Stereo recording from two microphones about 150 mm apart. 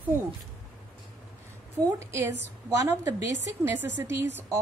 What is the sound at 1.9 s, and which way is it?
Speech, 20° right (ahead or behind).